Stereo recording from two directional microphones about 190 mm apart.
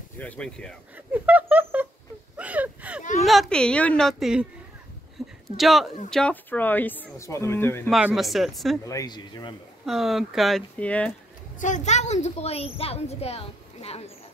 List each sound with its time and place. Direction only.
0.2 s speech: 5° left (ahead or behind)
0.9 s a sound: 10° right (ahead or behind)
3.0 s a sound: 40° left (ahead or behind)
3.3 s speech: centre (ahead or behind)
5.2 s a sound: centre (ahead or behind)
5.6 s speech: centre (ahead or behind)
7.9 s speech: 5° right (ahead or behind)
8.8 s speech: 20° left (ahead or behind)
9.8 s speech: centre (ahead or behind)
11.6 s a woman's voice: 40° left (ahead or behind)